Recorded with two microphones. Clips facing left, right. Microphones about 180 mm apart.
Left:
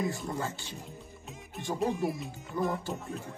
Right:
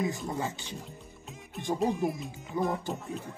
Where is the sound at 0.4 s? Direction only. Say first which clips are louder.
Right 1 dB; 20° right (ahead or behind).